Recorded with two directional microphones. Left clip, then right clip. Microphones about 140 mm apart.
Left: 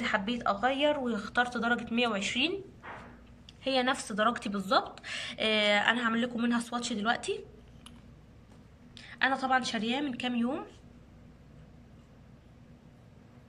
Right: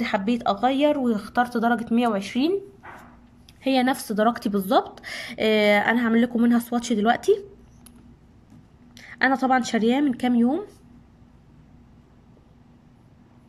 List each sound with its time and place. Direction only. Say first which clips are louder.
0.0 s speech: right 6 dB; 30° right (ahead or behind)
3.6 s speech: right 7 dB; 35° right (ahead or behind)
9.0 s a woman's voice: right 8 dB; 50° right (ahead or behind)